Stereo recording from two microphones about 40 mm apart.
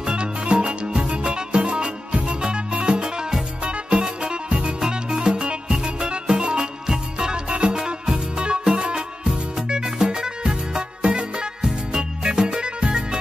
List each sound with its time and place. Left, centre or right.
0.0 s music: right